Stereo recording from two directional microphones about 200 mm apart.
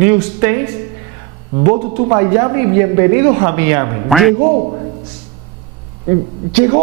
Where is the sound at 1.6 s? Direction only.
25° right (ahead or behind).